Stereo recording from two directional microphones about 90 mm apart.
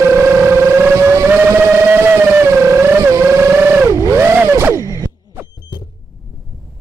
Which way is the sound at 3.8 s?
35° right (ahead or behind).